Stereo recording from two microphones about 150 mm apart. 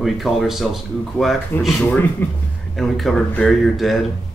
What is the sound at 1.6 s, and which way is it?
Speech, 10° left (ahead or behind).